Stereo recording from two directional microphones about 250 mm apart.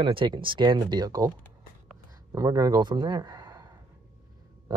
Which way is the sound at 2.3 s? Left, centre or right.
Centre.